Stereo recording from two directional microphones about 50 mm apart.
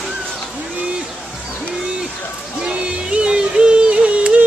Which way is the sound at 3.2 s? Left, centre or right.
Centre.